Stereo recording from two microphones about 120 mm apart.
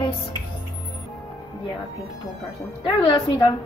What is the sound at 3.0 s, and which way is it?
Speech, 45° left (ahead or behind).